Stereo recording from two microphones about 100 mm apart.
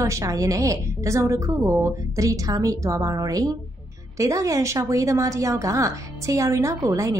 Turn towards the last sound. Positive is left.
turn(degrees=-35)  # may be behind; listen again after turning